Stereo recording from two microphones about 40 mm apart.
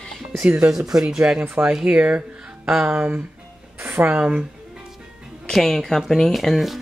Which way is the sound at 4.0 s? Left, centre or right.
Right.